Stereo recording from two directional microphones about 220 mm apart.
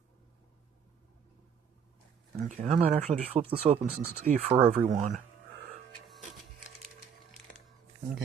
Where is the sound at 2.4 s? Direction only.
30° right (ahead or behind).